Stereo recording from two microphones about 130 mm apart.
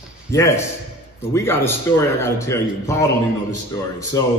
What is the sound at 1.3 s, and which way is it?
A man's voice, 20° left (ahead or behind).